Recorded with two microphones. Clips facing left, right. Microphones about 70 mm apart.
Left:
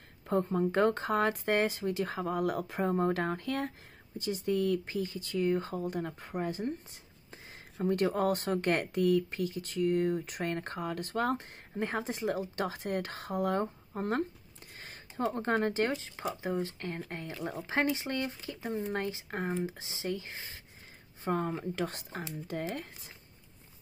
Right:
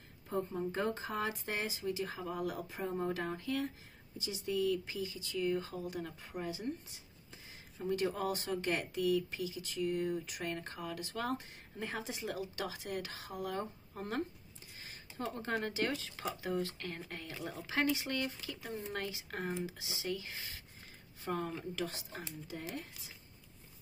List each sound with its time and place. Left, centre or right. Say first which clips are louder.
0.3 s speech: left 8 dB; left